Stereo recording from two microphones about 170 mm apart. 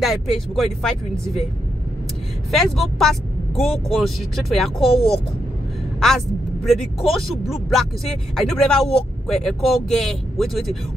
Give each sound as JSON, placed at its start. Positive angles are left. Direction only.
{"t": 0.0, "sound": "speech", "side_deg": 0}
{"t": 2.5, "sound": "speech", "side_deg": 0}
{"t": 4.7, "sound": "speech", "side_deg": 35}
{"t": 5.9, "sound": "speech", "side_deg": 0}